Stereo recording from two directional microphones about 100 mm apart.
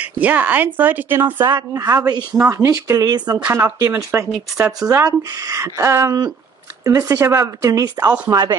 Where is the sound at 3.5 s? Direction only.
25° right (ahead or behind).